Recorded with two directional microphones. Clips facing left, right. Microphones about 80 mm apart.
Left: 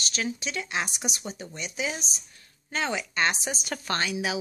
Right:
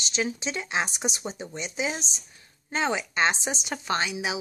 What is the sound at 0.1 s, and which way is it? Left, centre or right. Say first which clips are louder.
Speech: right 4 dB; right.